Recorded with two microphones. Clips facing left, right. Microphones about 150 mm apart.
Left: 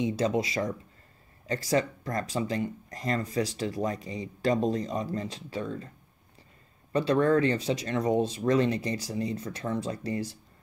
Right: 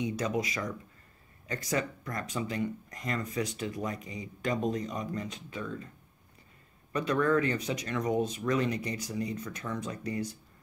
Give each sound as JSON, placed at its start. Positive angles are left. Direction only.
{"t": 0.0, "sound": "speech", "side_deg": 30}
{"t": 6.9, "sound": "speech", "side_deg": 30}